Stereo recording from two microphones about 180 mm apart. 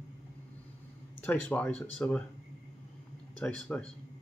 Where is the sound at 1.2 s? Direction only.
10° left (ahead or behind).